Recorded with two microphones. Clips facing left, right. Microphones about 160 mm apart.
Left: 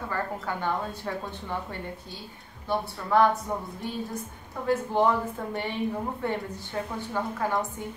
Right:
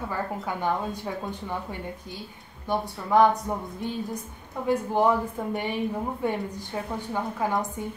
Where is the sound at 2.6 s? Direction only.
15° right (ahead or behind).